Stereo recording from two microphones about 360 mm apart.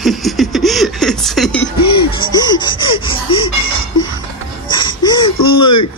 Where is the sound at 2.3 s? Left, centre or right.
Centre.